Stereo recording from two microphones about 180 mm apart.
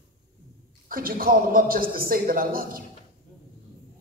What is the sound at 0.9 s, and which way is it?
A man's voice, 55° right (ahead or behind).